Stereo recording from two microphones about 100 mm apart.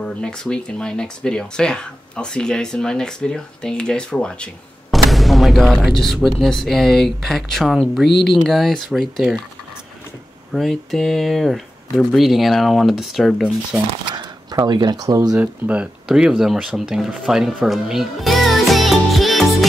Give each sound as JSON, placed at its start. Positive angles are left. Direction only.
{"t": 0.0, "sound": "speech", "side_deg": 10}
{"t": 10.5, "sound": "speech", "side_deg": 0}
{"t": 14.1, "sound": "a sound", "side_deg": -45}
{"t": 14.7, "sound": "speech", "side_deg": -45}
{"t": 15.3, "sound": "speech", "side_deg": -15}